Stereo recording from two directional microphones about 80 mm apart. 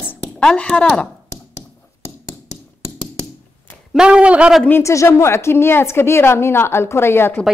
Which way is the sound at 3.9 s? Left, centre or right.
Centre.